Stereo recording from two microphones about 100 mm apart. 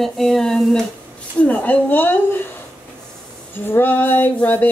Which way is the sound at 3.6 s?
20° left (ahead or behind).